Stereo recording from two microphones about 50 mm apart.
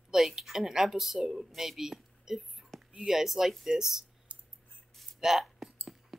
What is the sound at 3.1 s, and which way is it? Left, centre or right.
Speech, centre.